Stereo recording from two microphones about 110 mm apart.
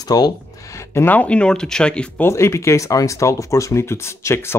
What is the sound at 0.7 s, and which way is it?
Speech, 20° left (ahead or behind).